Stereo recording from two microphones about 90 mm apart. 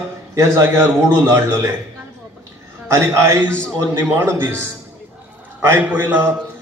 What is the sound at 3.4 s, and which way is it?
Speech, 10° left (ahead or behind).